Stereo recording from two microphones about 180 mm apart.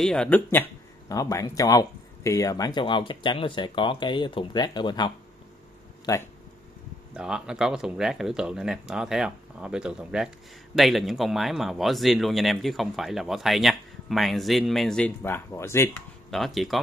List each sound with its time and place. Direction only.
0.0 s speech: 5° left (ahead or behind); by 6.2 s 20° left (ahead or behind)
7.2 s speech: 5° right (ahead or behind); by 15.9 s 15° left (ahead or behind)
16.3 s speech: centre (ahead or behind)